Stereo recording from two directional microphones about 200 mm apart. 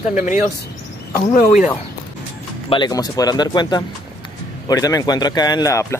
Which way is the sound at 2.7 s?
20° left (ahead or behind).